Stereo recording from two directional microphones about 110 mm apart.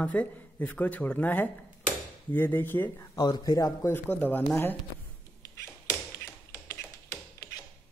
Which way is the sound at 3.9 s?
15° left (ahead or behind).